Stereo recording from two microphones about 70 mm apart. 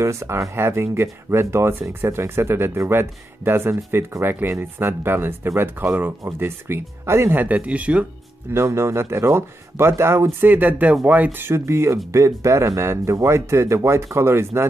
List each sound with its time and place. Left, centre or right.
0.0 s speech: right
7.3 s speech: right
8.5 s speech: right
10.4 s speech: right
11.3 s speech: right